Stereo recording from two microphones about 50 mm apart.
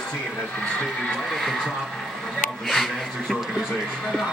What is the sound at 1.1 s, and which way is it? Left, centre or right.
Speech, centre.